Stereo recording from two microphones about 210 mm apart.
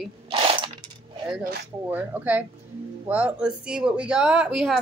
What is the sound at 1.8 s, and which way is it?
Speech, 10° right (ahead or behind).